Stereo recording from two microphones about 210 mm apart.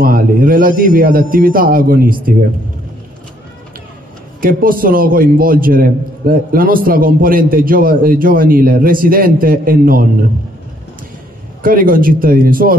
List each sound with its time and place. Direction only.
0.0 s a man's voice: 45° right (ahead or behind)
4.4 s a man's voice: 45° right (ahead or behind)
11.6 s a man's voice: 40° right (ahead or behind)